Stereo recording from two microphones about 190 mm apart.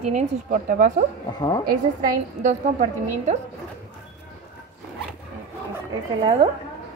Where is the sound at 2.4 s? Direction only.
40° right (ahead or behind).